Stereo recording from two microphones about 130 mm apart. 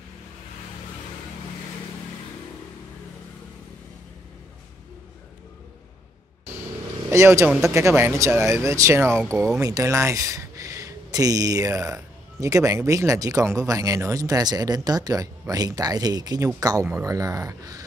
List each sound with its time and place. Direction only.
7.1 s speech: 20° right (ahead or behind)